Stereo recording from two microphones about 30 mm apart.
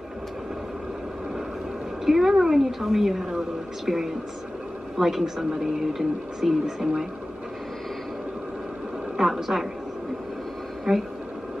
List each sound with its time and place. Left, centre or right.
2.0 s speech: centre
9.2 s a woman's voice: centre
10.9 s speech: right